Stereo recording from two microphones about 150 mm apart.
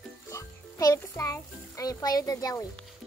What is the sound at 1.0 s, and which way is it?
A child's voice, 20° left (ahead or behind).